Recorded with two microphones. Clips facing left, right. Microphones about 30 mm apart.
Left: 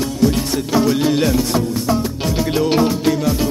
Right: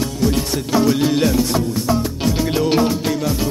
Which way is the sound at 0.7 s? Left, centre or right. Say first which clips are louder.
Even; centre.